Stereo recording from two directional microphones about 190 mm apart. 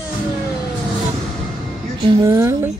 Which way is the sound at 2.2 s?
15° right (ahead or behind).